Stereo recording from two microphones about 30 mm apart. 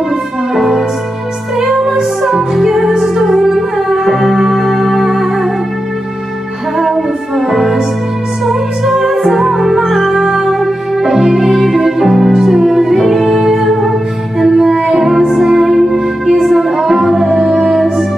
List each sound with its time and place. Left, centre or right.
0.6 s music: centre
6.8 s music: centre
17.4 s music: right
17.7 s music: centre